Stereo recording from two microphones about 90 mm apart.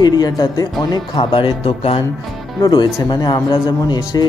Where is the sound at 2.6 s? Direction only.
55° left (ahead or behind).